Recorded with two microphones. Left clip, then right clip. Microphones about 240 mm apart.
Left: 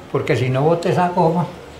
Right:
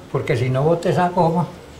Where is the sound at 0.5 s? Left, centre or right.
Left.